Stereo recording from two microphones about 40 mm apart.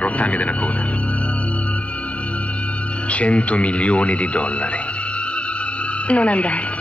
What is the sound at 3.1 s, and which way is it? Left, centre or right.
Speech, left.